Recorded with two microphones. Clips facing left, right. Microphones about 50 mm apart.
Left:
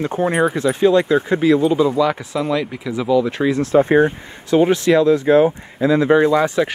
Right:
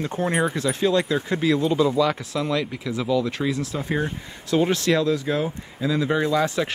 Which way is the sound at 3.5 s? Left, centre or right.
Left.